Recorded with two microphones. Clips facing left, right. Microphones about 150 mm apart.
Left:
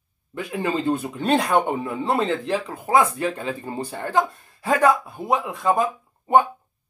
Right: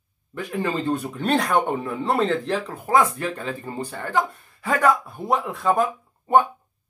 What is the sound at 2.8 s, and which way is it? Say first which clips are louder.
Speech: left 1 dB; 25° left (ahead or behind).